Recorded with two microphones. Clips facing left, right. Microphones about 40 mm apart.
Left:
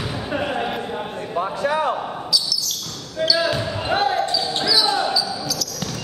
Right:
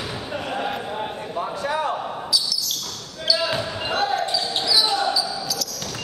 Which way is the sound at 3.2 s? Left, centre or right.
Left.